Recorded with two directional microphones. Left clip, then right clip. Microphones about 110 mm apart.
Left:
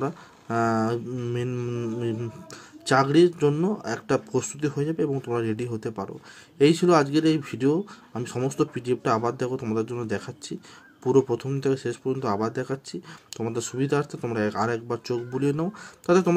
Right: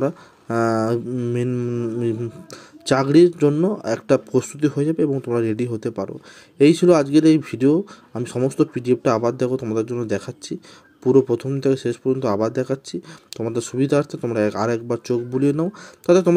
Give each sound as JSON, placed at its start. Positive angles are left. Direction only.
{"t": 0.0, "sound": "speech", "side_deg": -40}
{"t": 1.5, "sound": "mantra", "side_deg": -15}
{"t": 2.5, "sound": "speech", "side_deg": -35}
{"t": 11.6, "sound": "speech", "side_deg": -30}